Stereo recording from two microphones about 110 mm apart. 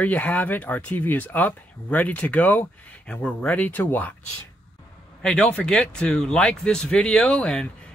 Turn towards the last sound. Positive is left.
turn(degrees=5)  # may be behind; listen again after turning